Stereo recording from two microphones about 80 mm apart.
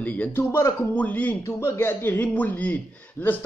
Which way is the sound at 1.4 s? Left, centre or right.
Left.